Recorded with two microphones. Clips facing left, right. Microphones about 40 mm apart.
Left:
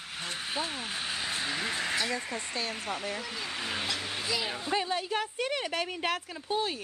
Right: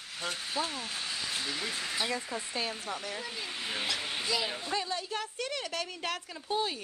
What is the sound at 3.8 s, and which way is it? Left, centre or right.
Speech, centre.